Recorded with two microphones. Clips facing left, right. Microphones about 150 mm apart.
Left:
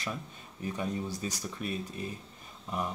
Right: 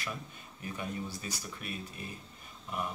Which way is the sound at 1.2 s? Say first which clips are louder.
Left 6 dB; 40° left (ahead or behind).